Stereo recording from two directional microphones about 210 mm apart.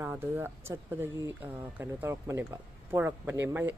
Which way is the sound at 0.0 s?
10° right (ahead or behind).